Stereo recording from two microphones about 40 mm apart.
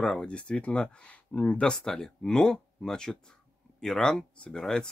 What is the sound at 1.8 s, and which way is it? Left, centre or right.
Speech, centre.